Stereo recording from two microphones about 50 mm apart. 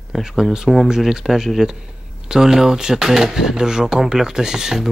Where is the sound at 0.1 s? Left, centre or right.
Centre.